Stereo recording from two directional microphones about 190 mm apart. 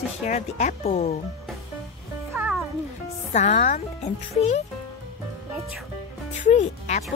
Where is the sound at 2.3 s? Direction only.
Centre (ahead or behind).